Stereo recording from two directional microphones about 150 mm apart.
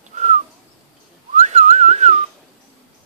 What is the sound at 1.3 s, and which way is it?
Whistling, 50° right (ahead or behind).